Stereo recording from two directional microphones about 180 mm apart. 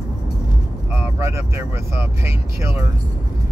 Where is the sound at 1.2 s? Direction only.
15° right (ahead or behind).